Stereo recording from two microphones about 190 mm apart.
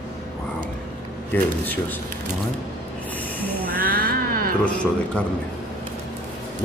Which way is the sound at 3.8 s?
50° right (ahead or behind).